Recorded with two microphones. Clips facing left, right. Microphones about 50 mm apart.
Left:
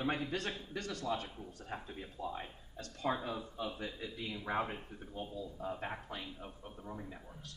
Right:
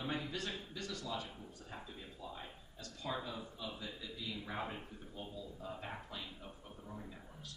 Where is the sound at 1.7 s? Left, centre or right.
Left.